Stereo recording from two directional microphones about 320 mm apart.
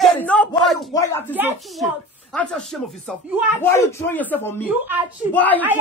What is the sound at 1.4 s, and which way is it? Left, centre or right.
Speech, centre.